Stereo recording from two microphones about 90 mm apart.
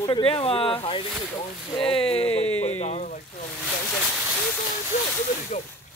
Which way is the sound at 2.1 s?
90° left.